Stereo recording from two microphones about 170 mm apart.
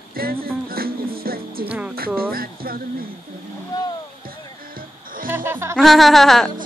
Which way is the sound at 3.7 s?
20° left (ahead or behind).